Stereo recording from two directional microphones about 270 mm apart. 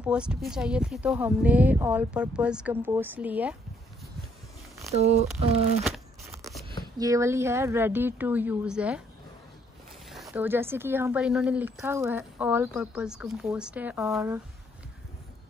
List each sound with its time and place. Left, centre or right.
0.0 s speech: centre
4.9 s speech: right
5.8 s a sound: centre
7.0 s a woman's voice: centre
10.0 s speech: centre